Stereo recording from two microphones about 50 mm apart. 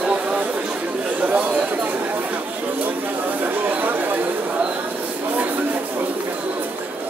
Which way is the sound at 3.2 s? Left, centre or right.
Right.